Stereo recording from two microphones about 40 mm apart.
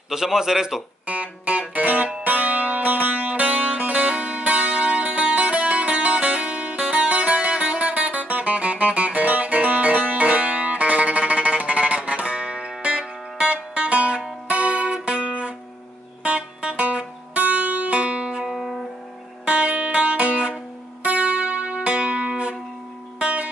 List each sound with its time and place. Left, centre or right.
0.1 s a man's voice: centre
1.0 s music: right
18.5 s music: centre
19.4 s music: right